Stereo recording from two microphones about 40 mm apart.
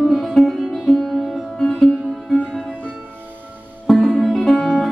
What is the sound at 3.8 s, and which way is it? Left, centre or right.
Music, centre.